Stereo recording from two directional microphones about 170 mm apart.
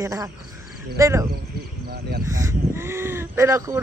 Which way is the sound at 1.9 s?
65° right (ahead or behind).